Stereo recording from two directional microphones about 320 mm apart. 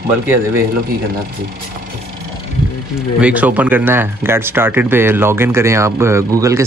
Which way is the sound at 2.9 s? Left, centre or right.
Centre.